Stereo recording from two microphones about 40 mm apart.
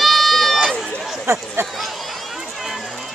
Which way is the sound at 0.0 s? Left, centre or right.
Centre.